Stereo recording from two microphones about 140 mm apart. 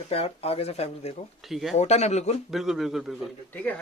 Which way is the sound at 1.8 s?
55° left (ahead or behind).